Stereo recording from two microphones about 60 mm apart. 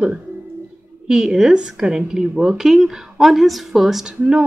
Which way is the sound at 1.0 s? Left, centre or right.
Centre.